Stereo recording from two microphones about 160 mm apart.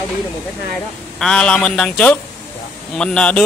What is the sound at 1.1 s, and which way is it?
Speech, 5° left (ahead or behind).